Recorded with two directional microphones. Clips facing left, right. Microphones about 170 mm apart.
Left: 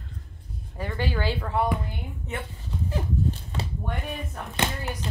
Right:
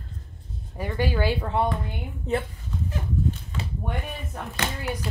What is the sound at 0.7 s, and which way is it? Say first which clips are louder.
Speech: right 3 dB; 15° right (ahead or behind).